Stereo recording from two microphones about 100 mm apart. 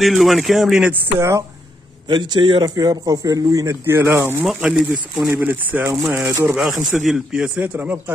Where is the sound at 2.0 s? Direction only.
45° right (ahead or behind).